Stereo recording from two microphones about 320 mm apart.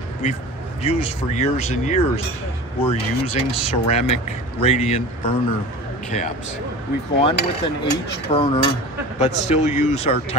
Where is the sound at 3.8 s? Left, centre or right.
Centre.